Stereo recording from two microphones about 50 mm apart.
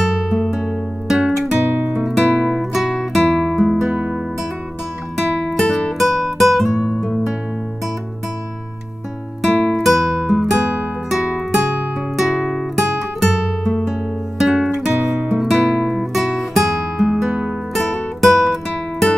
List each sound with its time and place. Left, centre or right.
0.0 s music: centre
1.7 s music: right
2.4 s music: centre
5.1 s music: centre
9.4 s music: centre
12.2 s music: centre
14.4 s guitar: centre
16.3 s music: centre
17.7 s music: centre